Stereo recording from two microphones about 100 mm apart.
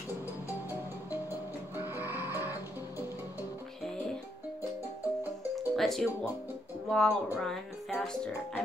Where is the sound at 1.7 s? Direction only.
20° right (ahead or behind).